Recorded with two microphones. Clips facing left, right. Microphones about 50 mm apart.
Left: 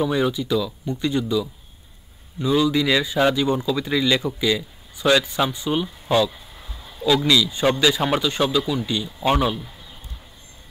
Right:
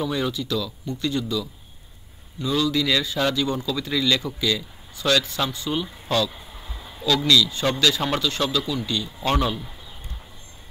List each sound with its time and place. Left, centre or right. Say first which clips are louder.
0.0 s a man's voice: left 4 dB; centre